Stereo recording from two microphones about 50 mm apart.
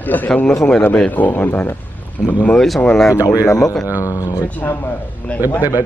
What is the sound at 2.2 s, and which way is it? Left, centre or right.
Speech, centre.